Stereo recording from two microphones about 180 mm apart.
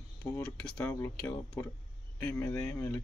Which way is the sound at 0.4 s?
5° left (ahead or behind).